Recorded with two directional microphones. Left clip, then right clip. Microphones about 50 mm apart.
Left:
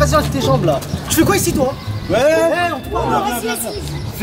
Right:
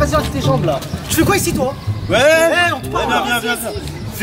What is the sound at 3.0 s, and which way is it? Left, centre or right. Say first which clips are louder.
Speech: right 1 dB; right.